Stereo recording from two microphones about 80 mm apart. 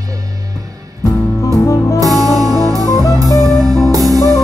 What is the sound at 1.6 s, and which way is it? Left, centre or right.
Music, left.